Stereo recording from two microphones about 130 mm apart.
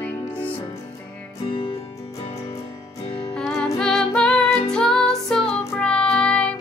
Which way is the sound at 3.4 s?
5° left (ahead or behind).